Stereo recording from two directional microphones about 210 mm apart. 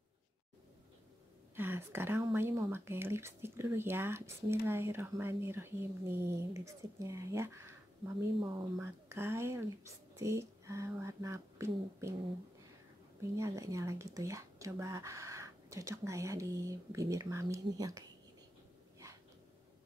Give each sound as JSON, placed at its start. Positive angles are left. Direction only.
{"t": 1.5, "sound": "speech", "side_deg": -10}
{"t": 8.7, "sound": "speech", "side_deg": -10}
{"t": 13.4, "sound": "speech", "side_deg": -15}